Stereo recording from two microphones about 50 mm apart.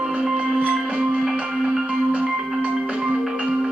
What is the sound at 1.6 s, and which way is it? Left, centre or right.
Music, centre.